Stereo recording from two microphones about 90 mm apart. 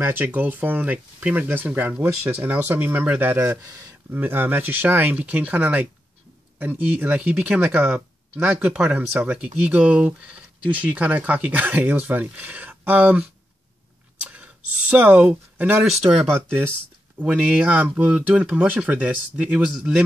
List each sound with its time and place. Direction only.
0.0 s speech: 20° right (ahead or behind)
14.2 s a sound: 15° right (ahead or behind)
15.8 s speech: 5° right (ahead or behind)
16.3 s speech: 10° left (ahead or behind)
17.2 s speech: 15° right (ahead or behind)